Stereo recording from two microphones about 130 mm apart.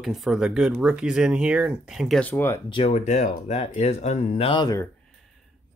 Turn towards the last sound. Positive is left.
turn(degrees=30)  # may be behind; listen again after turning